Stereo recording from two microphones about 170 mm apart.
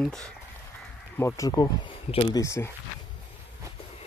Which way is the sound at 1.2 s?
20° left (ahead or behind).